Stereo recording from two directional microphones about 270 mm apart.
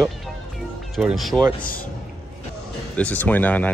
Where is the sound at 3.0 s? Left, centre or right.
Centre.